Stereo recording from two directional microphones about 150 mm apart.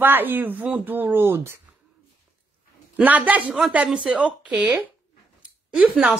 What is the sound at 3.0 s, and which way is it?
Speech, 10° right (ahead or behind).